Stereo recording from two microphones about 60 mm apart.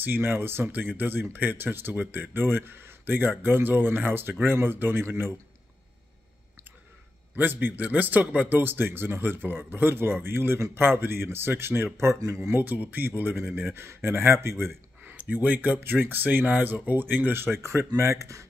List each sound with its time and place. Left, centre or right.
0.0 s speech: right
7.3 s speech: right
12.6 s speech: right
15.1 s speech: right
17.6 s speech: right